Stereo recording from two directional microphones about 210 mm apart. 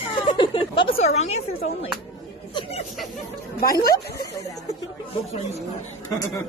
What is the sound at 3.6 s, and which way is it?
Speech, 45° left (ahead or behind).